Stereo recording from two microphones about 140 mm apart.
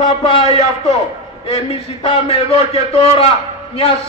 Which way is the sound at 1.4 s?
45° left (ahead or behind).